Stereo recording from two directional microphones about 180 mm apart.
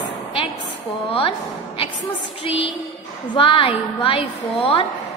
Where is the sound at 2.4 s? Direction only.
35° left (ahead or behind).